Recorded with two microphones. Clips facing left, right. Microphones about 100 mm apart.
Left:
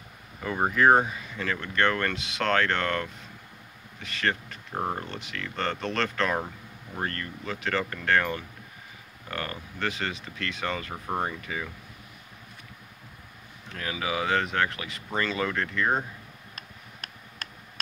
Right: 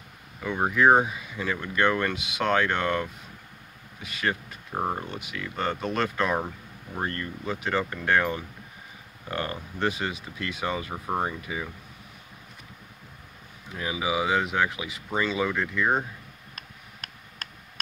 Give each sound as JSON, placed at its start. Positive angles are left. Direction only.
{"t": 0.4, "sound": "speech", "side_deg": 0}
{"t": 1.0, "sound": "speech", "side_deg": -10}
{"t": 13.7, "sound": "speech", "side_deg": -15}